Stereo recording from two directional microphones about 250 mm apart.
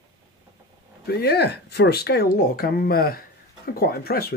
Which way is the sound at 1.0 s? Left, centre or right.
Left.